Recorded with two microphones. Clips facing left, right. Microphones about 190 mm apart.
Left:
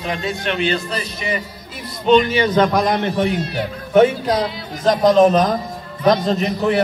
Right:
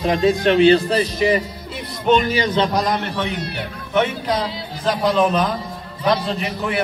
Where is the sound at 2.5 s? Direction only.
55° left (ahead or behind).